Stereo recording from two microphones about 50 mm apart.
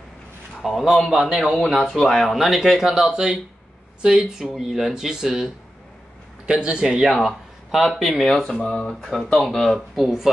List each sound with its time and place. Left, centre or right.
0.9 s speech: centre
1.2 s speech: centre
1.5 s speech: centre
6.4 s a man's voice: centre
6.9 s speech: centre
9.3 s speech: centre
9.8 s speech: centre